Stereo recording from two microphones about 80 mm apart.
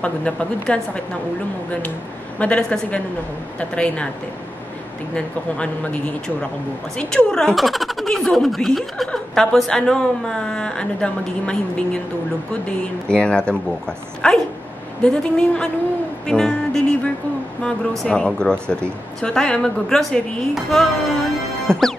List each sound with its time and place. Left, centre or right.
0.0 s speech: centre
2.3 s speech: centre
5.1 s speech: centre
21.6 s music: centre